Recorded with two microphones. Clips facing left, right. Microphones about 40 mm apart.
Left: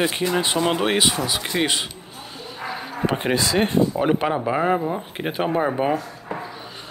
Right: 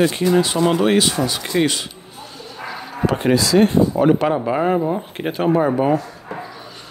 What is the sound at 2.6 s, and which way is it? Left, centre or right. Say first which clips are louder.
Bow-wow: right 2 dB; centre.